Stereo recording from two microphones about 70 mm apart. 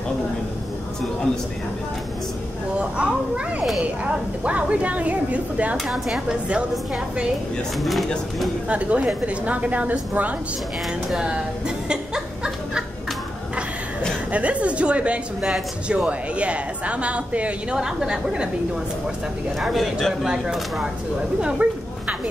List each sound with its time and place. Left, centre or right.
2.7 s speech: centre
5.9 s speech: centre
8.6 s speech: centre
11.1 s chuckle: centre
14.3 s speech: centre
17.7 s speech: centre
19.6 s speech: centre
21.4 s a sound: centre